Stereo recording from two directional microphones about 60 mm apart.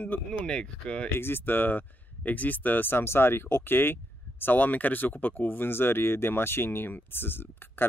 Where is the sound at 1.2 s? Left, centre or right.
Left.